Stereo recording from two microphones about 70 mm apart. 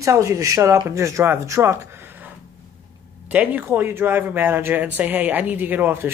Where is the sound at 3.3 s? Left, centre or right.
Right.